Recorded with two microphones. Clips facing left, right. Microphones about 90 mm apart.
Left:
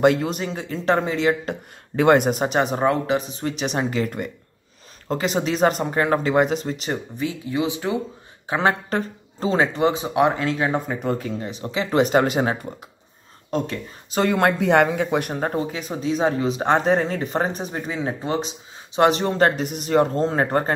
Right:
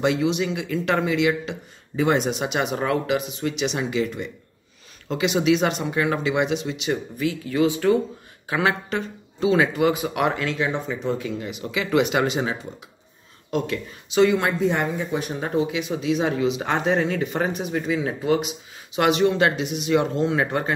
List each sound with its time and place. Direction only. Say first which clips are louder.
0.0 s speech: left 3 dB; 50° left (ahead or behind)
2.0 s speech: left 5 dB; 55° left (ahead or behind); by 7.2 s 40° left (ahead or behind)
7.2 s speech: right 3 dB; 20° left (ahead or behind)
8.5 s speech: left 2 dB; 30° left (ahead or behind)
10.6 s speech: left 2 dB; 45° left (ahead or behind)